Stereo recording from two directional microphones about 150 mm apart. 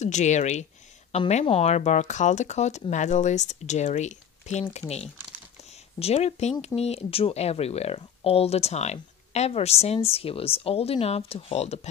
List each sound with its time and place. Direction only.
0.0 s speech: 50° left (ahead or behind)